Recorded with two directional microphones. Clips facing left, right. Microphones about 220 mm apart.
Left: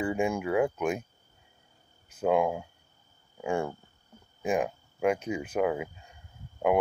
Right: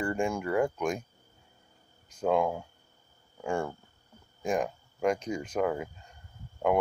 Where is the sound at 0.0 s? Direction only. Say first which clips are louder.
Left 2 dB; 5° left (ahead or behind).